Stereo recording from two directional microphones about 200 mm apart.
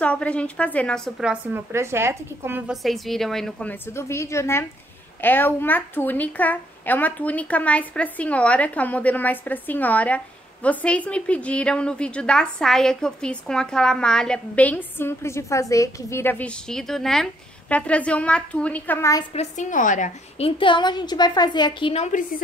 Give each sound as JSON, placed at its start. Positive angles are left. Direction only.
{"t": 0.0, "sound": "a woman's voice", "side_deg": 5}
{"t": 2.7, "sound": "a woman's voice", "side_deg": 0}
{"t": 19.3, "sound": "a woman's voice", "side_deg": 35}